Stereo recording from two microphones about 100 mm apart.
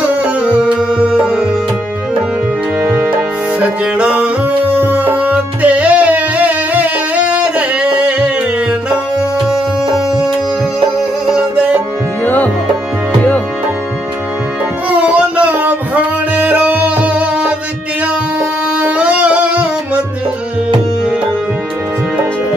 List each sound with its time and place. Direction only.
0.2 s music: 10° right (ahead or behind)
2.8 s music: 20° right (ahead or behind)
7.3 s a sound: 10° right (ahead or behind)
9.9 s tabla: 5° right (ahead or behind)
11.3 s music: 10° right (ahead or behind)
14.9 s music: 15° right (ahead or behind)
18.8 s music: 15° right (ahead or behind)